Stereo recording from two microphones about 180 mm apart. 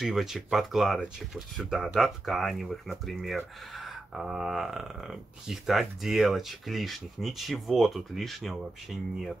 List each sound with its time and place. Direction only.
0.0 s speech: centre (ahead or behind)